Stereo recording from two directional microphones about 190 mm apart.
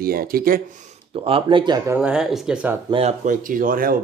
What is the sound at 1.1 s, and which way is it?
Speech, 30° right (ahead or behind).